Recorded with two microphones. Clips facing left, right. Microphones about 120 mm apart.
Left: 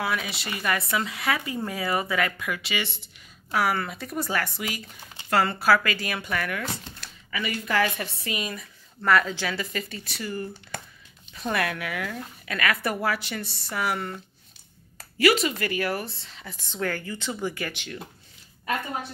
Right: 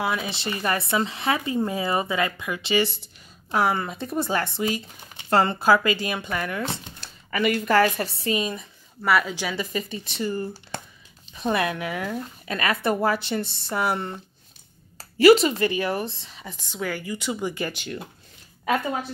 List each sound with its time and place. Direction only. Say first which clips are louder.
0.0 s speech: right 3 dB; 25° right (ahead or behind)
7.2 s a woman's voice: right 8 dB; 45° right (ahead or behind); by 8.6 s 25° right (ahead or behind)
9.0 s speech: even; 5° right (ahead or behind); by 10.8 s 30° right (ahead or behind)
11.3 s speech: right 3 dB; 20° right (ahead or behind)